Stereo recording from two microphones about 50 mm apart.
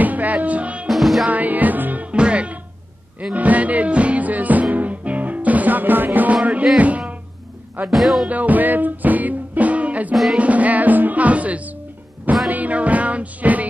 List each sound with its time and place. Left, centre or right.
0.0 s music: right
0.8 s music: centre
1.2 s music: right
2.1 s music: right
6.3 s music: right
7.9 s music: centre
8.3 s music: right